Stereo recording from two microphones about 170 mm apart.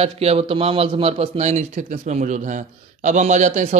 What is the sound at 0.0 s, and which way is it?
A man's voice, 35° right (ahead or behind).